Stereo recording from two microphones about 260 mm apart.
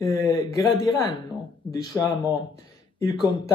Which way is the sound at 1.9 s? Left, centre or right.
Centre.